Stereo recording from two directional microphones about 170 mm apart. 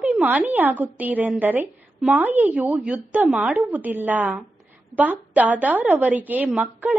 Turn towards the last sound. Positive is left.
turn(degrees=-10)  # may be behind; listen again after turning